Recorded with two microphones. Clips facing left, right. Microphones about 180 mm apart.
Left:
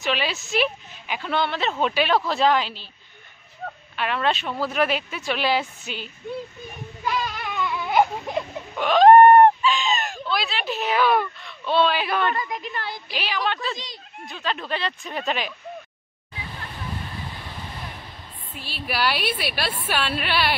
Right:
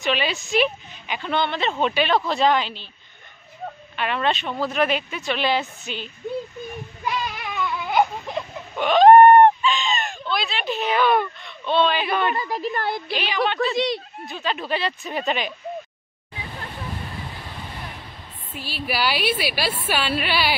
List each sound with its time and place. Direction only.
0.0 s speech: centre (ahead or behind)
3.9 s speech: centre (ahead or behind)
7.5 s a sound: centre (ahead or behind)
12.4 s a woman's voice: 35° right (ahead or behind)
12.7 s a woman's voice: 50° right (ahead or behind)
13.1 s speech: centre (ahead or behind)
13.7 s speech: 70° right (ahead or behind)
14.2 s speech: 5° right (ahead or behind)
18.6 s speech: centre (ahead or behind)